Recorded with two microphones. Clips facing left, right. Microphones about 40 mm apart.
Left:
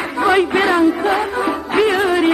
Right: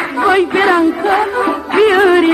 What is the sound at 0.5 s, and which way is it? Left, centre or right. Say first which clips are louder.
Music: right 3 dB; centre.